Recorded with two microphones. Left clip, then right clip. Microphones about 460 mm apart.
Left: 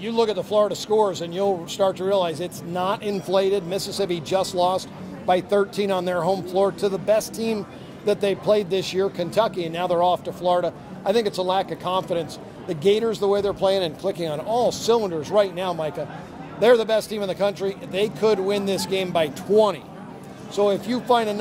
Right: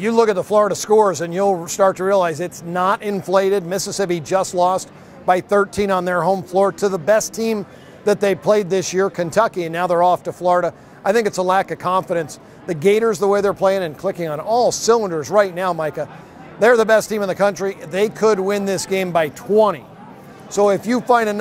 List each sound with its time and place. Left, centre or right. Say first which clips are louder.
0.0 s speech: right 7 dB; right
20.5 s speech: right 5 dB; right